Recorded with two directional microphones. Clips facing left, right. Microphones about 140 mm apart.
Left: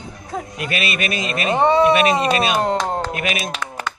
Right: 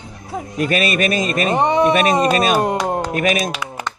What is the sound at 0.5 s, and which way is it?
A man's voice, 40° right (ahead or behind).